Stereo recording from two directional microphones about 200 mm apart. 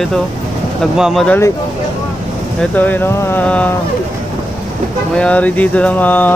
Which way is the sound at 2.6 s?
10° left (ahead or behind).